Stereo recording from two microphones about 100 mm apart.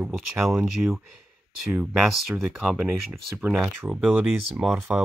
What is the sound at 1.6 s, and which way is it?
Speech, 5° right (ahead or behind).